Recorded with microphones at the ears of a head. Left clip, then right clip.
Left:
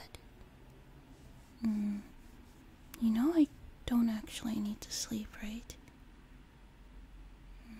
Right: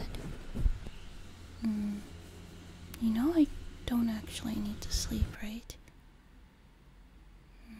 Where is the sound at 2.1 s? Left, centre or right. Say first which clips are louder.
Right 7 dB; right.